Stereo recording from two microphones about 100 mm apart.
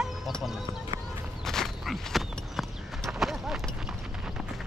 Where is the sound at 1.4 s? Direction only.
5° left (ahead or behind).